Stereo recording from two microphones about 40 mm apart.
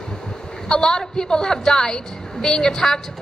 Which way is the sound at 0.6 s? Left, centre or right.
Centre.